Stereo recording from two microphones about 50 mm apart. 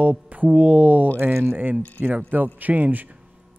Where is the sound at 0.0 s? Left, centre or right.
Right.